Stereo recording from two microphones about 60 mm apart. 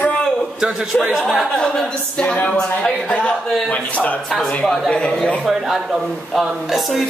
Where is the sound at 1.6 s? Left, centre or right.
Centre.